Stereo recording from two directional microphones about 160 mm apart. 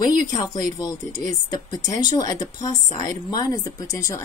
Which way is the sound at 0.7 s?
25° left (ahead or behind).